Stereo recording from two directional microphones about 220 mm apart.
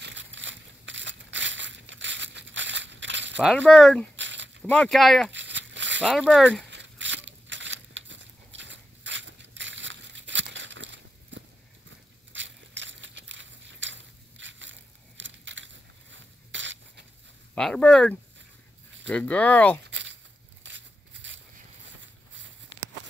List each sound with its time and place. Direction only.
0.0 s crushing: 55° right (ahead or behind)
3.5 s speech: 5° left (ahead or behind)
4.2 s a sound: 55° right (ahead or behind)
4.6 s speech: 5° left (ahead or behind)
5.3 s crumpling: 55° right (ahead or behind)
6.0 s speech: centre (ahead or behind)
6.7 s a sound: 55° right (ahead or behind)
17.6 s speech: 5° left (ahead or behind)
19.8 s a sound: 55° right (ahead or behind)